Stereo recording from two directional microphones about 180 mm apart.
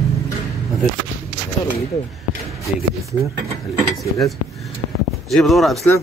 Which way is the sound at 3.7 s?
Centre (ahead or behind).